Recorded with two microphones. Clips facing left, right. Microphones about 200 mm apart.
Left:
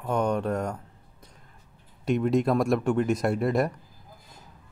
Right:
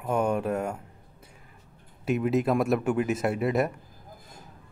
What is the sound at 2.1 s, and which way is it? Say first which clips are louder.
Speech: left 1 dB; 5° right (ahead or behind).